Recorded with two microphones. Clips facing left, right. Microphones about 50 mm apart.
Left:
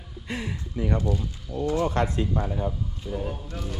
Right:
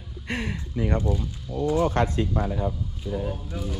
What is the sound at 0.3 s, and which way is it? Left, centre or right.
Speech, right.